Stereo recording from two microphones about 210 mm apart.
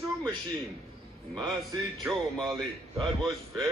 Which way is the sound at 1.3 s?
20° right (ahead or behind).